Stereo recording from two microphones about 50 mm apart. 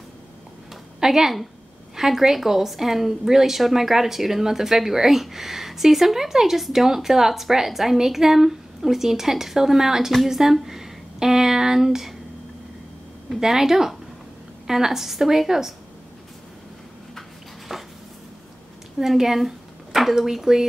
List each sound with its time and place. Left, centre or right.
1.0 s a woman's voice: centre
13.4 s a woman's voice: centre
17.7 s a sound: centre
18.9 s speech: centre